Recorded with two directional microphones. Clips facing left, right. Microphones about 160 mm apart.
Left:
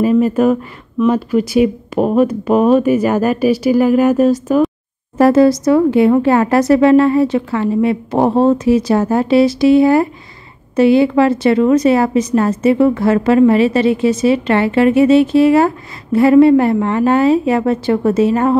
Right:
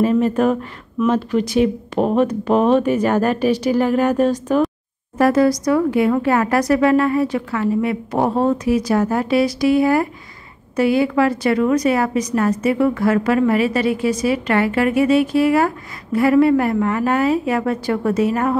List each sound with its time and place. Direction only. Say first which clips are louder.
0.0 s speech: left 4 dB; 10° left (ahead or behind)
5.1 s a woman's voice: left 5 dB; 25° left (ahead or behind)